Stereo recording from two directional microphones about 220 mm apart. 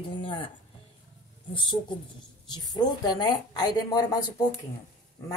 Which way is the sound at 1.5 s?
20° left (ahead or behind).